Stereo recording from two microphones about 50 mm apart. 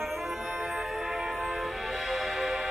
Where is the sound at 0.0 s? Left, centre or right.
Centre.